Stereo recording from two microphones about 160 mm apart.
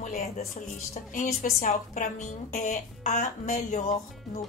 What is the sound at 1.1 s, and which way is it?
A woman's voice, 55° left (ahead or behind).